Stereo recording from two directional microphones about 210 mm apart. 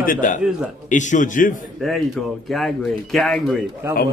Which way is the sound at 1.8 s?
Centre (ahead or behind).